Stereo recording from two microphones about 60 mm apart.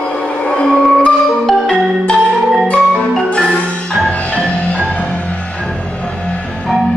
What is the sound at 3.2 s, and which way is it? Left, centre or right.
Marimba, centre.